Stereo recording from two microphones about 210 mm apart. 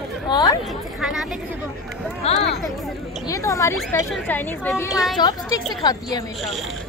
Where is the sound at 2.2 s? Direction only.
30° left (ahead or behind).